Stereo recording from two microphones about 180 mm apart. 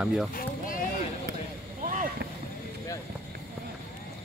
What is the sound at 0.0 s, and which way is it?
Speech, 5° right (ahead or behind).